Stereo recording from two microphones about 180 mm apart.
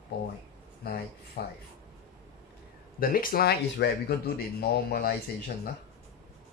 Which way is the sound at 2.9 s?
50° left (ahead or behind).